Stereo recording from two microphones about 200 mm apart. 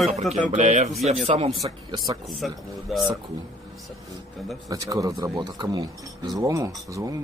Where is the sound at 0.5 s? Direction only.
35° right (ahead or behind).